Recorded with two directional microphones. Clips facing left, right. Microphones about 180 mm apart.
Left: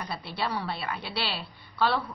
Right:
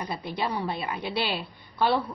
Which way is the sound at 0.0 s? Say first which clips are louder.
Right 2 dB; 15° right (ahead or behind).